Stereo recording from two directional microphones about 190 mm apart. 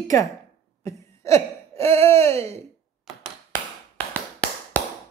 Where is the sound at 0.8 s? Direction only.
15° left (ahead or behind).